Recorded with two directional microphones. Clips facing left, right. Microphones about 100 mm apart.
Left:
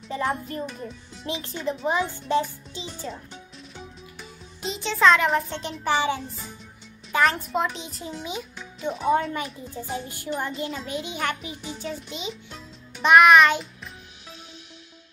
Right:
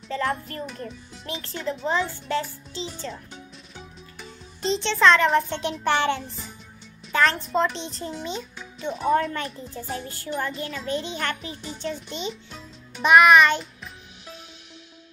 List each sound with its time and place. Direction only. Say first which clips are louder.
0.1 s a woman's voice: even; 15° left (ahead or behind)
0.7 s a child's voice: even; centre (ahead or behind)
1.2 s a woman's voice: left 1 dB; 15° left (ahead or behind)
3.7 s a child's voice: left 2 dB; 5° left (ahead or behind)